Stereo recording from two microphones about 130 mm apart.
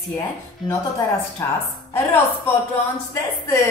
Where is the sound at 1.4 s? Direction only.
20° left (ahead or behind).